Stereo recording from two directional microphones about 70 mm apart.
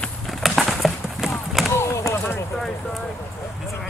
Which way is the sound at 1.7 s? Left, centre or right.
Left.